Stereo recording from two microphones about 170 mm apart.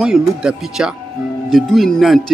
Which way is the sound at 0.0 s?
5° right (ahead or behind).